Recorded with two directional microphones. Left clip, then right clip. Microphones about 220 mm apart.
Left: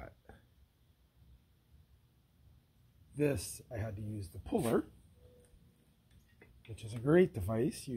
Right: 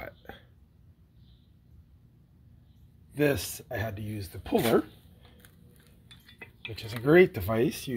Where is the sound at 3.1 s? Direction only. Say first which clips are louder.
Right 8 dB; 5° left (ahead or behind).